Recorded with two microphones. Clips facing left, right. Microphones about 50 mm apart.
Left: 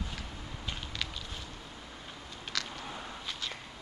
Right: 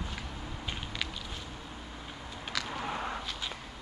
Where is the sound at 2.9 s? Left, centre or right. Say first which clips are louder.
Right 7 dB; right.